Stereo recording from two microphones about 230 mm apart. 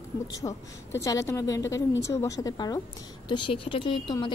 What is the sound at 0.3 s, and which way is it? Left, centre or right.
A woman's voice, centre.